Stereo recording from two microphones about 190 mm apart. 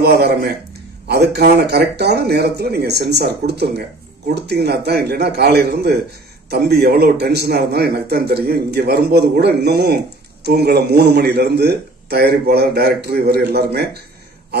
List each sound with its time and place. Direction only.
0.0 s a man's voice: 55° right (ahead or behind)